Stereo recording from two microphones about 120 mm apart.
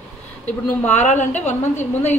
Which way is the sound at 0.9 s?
75° left (ahead or behind).